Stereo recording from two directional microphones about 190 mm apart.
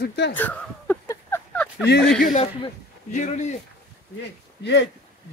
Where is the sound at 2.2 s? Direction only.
35° left (ahead or behind).